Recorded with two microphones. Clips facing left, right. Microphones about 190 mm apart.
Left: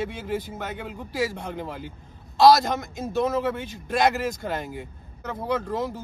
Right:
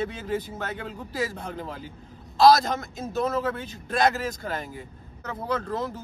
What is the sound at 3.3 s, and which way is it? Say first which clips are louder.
Speech: left 2 dB; 10° left (ahead or behind).